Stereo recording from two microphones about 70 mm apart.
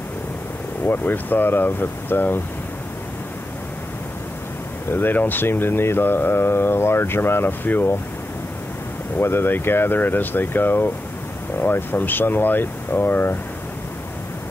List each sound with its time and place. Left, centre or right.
0.8 s speech: left
4.9 s speech: left
9.2 s speech: left